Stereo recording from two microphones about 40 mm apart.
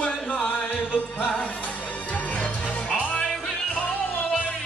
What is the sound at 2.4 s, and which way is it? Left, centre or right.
Music, left.